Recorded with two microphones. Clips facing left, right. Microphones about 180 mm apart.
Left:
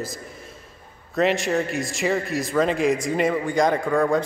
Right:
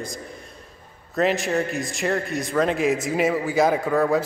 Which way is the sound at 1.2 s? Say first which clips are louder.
Left 1 dB; centre (ahead or behind).